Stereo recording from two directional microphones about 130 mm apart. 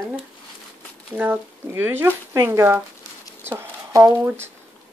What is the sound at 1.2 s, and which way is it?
Speech, 15° right (ahead or behind).